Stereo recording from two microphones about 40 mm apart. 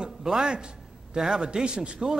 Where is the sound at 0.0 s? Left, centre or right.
Centre.